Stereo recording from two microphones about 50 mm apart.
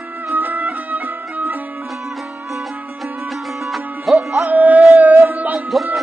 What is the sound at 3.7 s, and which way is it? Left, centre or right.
Music, centre.